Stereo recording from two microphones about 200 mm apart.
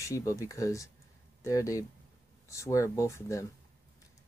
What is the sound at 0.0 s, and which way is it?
Speech, 15° left (ahead or behind).